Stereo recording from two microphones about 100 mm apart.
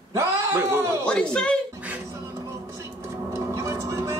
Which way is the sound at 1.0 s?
10° left (ahead or behind).